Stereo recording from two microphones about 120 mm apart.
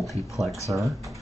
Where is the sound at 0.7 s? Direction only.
20° right (ahead or behind).